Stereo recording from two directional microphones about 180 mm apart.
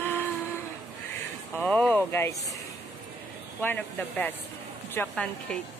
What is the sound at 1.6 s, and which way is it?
Speech, 10° left (ahead or behind).